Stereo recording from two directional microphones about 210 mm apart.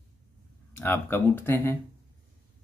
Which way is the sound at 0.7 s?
10° left (ahead or behind).